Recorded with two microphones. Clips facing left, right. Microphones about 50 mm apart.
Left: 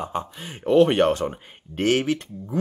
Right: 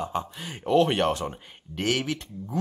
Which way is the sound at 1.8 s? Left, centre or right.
Left.